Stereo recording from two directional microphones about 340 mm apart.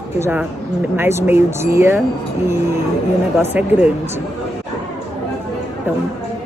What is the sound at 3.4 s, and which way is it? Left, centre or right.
Speech, centre.